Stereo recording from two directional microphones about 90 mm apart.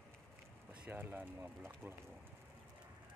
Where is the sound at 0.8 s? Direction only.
20° right (ahead or behind).